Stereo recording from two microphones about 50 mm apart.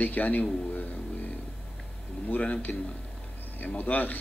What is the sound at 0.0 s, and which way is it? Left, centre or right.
Speech, left.